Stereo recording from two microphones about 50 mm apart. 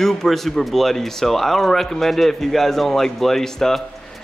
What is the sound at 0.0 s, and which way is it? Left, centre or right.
Speech, centre.